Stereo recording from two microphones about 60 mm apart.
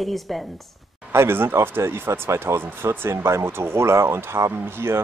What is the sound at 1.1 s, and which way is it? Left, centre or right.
Speech, right.